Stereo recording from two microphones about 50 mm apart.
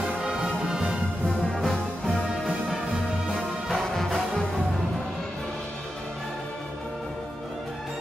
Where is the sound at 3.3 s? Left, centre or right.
Centre.